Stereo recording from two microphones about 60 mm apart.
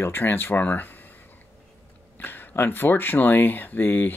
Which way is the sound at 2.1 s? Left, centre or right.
Left.